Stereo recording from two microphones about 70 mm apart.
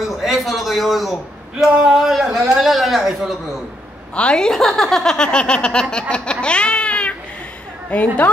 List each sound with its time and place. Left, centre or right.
0.0 s a man's voice: centre
4.1 s a woman's voice: centre